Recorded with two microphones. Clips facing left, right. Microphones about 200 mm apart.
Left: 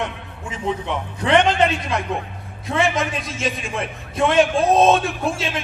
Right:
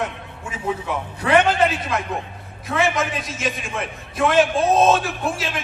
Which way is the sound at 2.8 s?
Centre (ahead or behind).